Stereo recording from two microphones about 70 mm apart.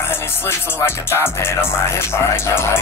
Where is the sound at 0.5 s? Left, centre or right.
Left.